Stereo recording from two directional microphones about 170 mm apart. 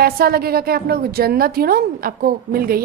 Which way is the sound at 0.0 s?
60° right (ahead or behind).